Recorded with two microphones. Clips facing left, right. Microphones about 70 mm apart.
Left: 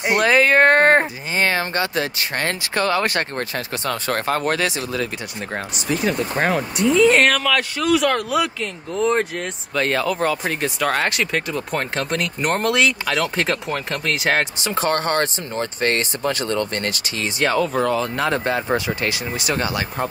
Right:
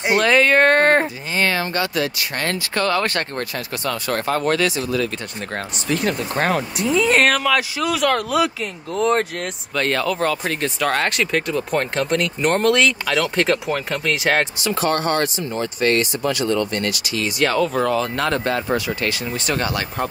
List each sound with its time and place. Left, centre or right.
0.0 s speech: centre
3.3 s speech: left
4.4 s speech: left
5.9 s speech: centre
14.6 s speech: left
17.5 s speech: centre
18.3 s speech: left
19.3 s speech: centre